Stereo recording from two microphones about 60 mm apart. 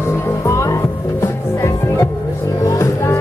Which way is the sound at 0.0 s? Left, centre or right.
Left.